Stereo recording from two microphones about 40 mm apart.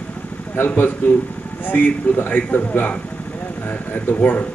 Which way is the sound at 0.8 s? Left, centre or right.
Left.